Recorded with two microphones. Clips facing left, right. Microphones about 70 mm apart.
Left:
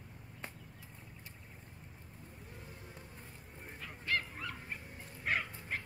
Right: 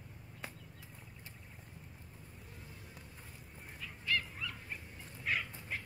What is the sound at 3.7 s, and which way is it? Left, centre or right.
Dog, left.